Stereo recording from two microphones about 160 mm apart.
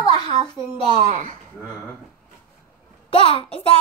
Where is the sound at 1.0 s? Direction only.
45° right (ahead or behind).